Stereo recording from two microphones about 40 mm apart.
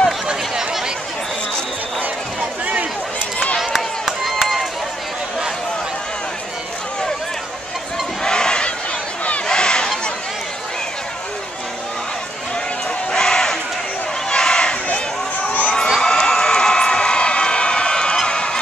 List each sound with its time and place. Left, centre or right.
2.6 s run: right
4.3 s run: centre
8.2 s crowd: left
9.5 s a sound: centre
13.1 s a sound: centre
14.3 s crowd: centre
15.4 s children shouting: left
16.0 s crowd: centre